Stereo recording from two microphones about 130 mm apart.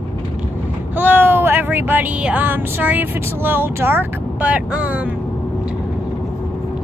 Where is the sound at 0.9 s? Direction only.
15° right (ahead or behind).